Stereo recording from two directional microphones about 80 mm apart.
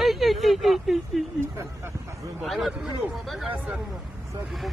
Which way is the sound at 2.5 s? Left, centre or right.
Centre.